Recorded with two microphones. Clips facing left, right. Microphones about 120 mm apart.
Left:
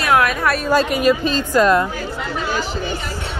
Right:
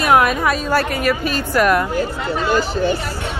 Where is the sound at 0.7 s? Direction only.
15° left (ahead or behind).